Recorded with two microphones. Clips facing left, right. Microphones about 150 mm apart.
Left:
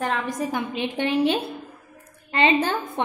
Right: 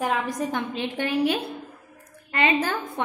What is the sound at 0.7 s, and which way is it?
A woman's voice, 20° left (ahead or behind).